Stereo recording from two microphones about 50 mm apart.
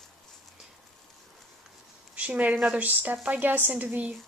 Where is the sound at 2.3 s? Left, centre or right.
Right.